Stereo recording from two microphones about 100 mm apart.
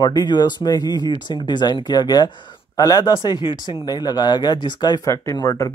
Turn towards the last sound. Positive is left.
turn(degrees=40)  # may be behind; listen again after turning